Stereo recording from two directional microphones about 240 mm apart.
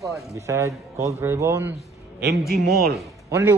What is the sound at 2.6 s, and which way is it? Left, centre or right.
Speech, right.